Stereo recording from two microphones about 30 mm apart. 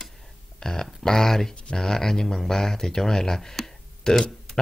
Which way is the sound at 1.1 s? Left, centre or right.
Centre.